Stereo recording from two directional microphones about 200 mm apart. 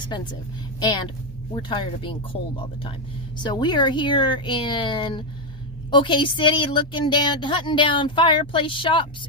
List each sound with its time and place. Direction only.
0.7 s a woman's voice: 20° left (ahead or behind)